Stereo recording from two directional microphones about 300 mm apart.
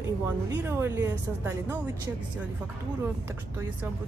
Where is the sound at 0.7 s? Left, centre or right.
Centre.